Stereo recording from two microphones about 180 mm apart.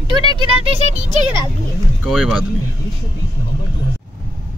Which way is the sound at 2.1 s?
Centre (ahead or behind).